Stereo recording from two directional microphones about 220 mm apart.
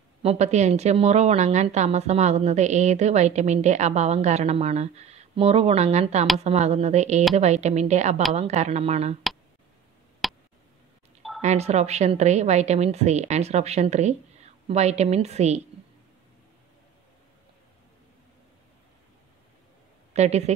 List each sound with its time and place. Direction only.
0.2 s a woman's voice: 30° right (ahead or behind)
10.2 s tick: centre (ahead or behind)
11.4 s a woman's voice: 30° right (ahead or behind)
20.1 s a woman's voice: 30° right (ahead or behind)